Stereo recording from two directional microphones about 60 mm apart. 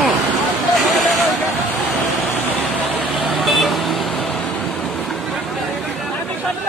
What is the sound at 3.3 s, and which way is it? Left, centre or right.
Vehicle, centre.